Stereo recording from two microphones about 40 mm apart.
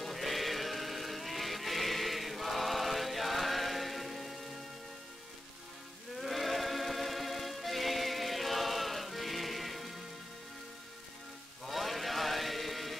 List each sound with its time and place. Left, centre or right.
0.0 s music: centre
6.1 s music: centre
11.6 s music: centre